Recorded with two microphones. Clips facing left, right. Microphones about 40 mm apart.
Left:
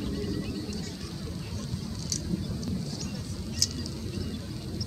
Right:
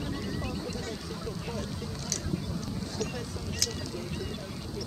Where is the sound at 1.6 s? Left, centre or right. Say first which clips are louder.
Even; right.